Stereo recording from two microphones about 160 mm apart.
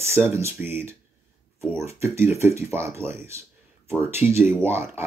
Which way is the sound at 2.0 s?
15° right (ahead or behind).